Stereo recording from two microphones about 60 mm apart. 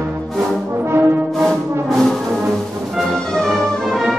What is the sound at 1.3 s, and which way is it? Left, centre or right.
Music, centre.